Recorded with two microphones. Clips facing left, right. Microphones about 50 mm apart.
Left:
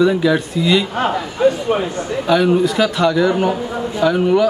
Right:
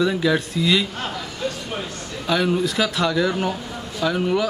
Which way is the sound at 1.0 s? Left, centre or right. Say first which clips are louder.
Left 11 dB; left.